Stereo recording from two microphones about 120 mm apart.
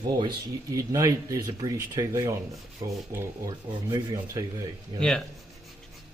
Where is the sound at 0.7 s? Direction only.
30° right (ahead or behind).